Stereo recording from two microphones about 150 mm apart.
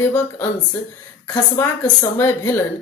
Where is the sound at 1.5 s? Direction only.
20° left (ahead or behind).